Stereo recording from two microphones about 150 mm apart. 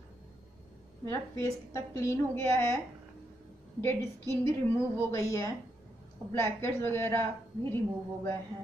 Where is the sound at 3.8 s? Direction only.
15° left (ahead or behind).